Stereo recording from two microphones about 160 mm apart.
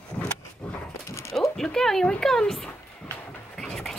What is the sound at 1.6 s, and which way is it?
Speech, 5° left (ahead or behind).